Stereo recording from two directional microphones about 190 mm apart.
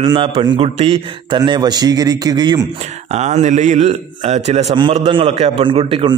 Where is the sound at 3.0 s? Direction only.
35° right (ahead or behind).